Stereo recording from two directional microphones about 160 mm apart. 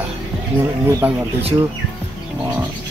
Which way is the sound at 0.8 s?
20° right (ahead or behind).